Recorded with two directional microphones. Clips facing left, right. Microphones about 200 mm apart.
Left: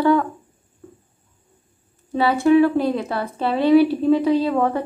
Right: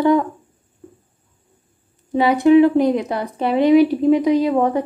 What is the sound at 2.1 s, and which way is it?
Speech, 15° right (ahead or behind).